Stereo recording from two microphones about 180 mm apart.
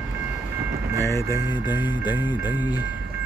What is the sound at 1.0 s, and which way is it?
Speech, 15° left (ahead or behind).